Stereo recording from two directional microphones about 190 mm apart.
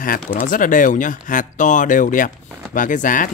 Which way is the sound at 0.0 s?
45° left (ahead or behind).